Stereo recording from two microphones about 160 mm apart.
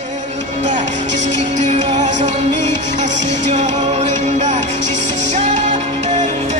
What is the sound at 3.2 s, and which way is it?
Music, 90° right.